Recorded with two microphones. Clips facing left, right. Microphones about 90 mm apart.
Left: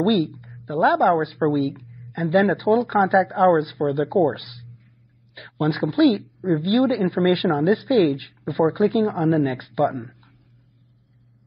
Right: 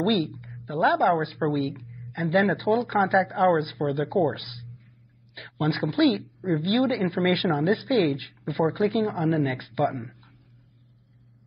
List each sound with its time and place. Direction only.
0.0 s a woman's voice: 35° left (ahead or behind)